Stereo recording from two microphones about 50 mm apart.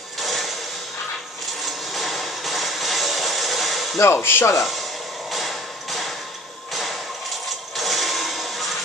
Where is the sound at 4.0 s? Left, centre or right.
Left.